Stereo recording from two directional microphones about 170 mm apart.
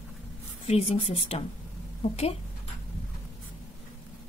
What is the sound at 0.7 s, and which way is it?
Speech, 35° left (ahead or behind).